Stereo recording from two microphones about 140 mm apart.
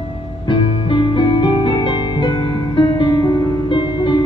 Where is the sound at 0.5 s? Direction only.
35° left (ahead or behind).